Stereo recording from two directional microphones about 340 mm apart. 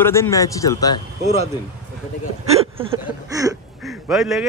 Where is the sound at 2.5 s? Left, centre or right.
Centre.